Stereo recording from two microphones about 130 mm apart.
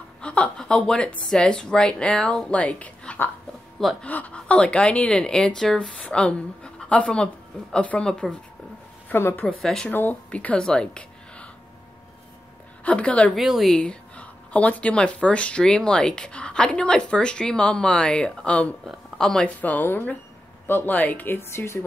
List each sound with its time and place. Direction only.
0.2 s a sound: 10° left (ahead or behind)
1.3 s speech: 5° left (ahead or behind)
12.8 s speech: 10° left (ahead or behind)